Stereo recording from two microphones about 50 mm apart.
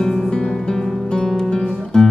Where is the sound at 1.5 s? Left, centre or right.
Centre.